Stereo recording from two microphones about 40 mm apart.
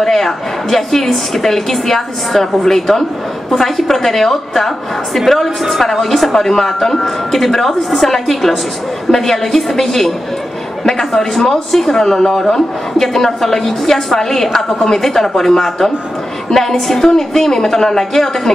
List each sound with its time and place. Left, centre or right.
0.0 s a woman's voice: centre